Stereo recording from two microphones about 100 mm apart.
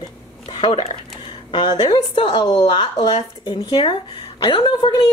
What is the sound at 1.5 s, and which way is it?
Speech, 50° left (ahead or behind).